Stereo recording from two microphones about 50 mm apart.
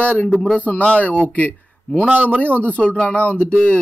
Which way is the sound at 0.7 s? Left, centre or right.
Left.